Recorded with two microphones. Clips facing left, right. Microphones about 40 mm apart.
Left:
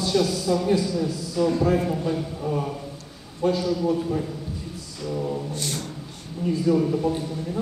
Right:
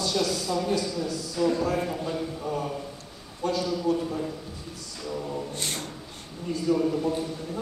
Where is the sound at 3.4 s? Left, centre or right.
Left.